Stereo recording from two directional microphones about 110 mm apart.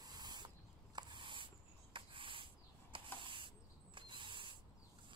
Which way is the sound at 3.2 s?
50° right (ahead or behind).